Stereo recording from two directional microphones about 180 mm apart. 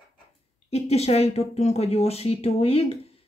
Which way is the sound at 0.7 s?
35° left (ahead or behind).